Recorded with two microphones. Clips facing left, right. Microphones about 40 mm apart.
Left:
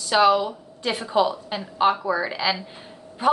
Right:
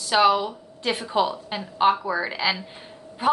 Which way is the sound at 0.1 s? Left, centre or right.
Centre.